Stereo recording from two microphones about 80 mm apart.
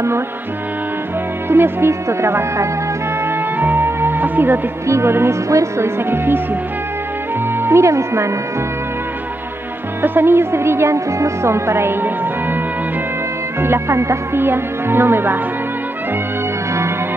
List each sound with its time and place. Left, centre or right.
1.5 s a woman's voice: right
3.5 s music: right
4.8 s a woman's voice: right
7.6 s a woman's voice: right
10.0 s a woman's voice: right
13.6 s speech: right